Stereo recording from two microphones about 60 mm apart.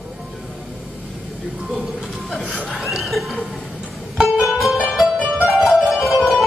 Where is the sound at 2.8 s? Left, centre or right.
Centre.